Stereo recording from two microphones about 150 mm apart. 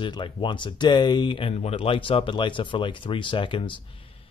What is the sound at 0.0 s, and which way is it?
Speech, 35° left (ahead or behind).